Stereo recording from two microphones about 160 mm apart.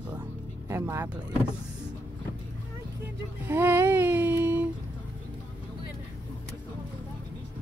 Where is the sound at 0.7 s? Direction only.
15° right (ahead or behind).